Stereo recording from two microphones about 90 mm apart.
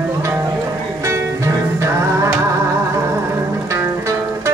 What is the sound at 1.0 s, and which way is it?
Music, 35° right (ahead or behind).